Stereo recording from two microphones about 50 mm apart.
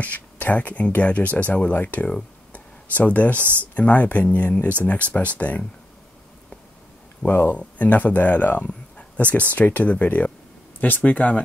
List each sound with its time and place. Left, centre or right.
0.0 s speech: left
2.5 s a sound: left
3.3 s speech: right
3.7 s speech: left
7.2 s speech: left
8.6 s a sound: left
9.7 s speech: left